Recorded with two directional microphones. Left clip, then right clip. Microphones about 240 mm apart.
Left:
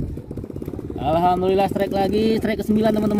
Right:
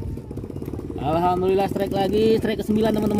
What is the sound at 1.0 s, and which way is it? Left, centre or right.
Speech, left.